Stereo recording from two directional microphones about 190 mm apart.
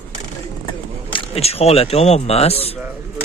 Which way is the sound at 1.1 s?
30° left (ahead or behind).